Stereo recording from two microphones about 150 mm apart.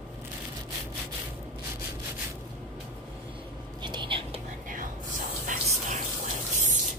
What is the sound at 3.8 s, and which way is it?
Whispering, 30° right (ahead or behind).